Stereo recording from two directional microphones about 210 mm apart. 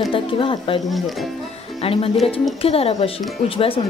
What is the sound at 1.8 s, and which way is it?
A woman's voice, 25° left (ahead or behind).